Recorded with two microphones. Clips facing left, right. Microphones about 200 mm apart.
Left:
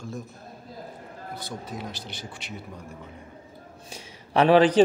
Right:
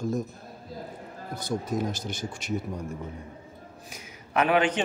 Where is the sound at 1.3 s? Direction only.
45° right (ahead or behind).